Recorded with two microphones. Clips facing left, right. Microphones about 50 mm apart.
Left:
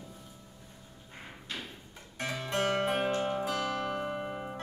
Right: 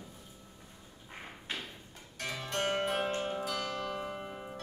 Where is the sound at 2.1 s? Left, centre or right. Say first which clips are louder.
Left 3 dB; centre.